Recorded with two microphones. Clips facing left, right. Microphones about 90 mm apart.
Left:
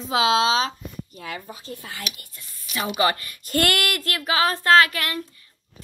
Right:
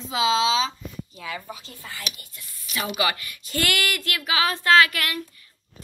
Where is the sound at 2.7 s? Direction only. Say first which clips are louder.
Left 3 dB; 35° left (ahead or behind).